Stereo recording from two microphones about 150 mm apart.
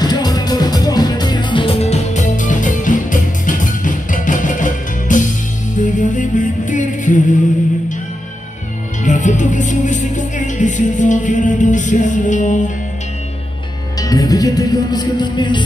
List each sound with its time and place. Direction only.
0.0 s music: 25° left (ahead or behind); by 7.3 s 55° left (ahead or behind)
9.0 s music: 55° left (ahead or behind)
13.9 s music: 25° left (ahead or behind)